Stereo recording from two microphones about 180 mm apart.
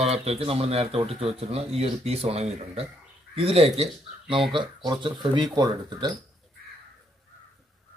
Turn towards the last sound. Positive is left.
turn(degrees=-25)  # may be behind; listen again after turning